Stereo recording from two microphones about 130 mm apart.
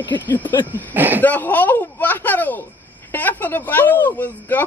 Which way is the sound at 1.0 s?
15° right (ahead or behind).